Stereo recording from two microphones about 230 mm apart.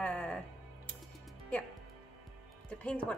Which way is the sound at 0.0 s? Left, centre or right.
Centre.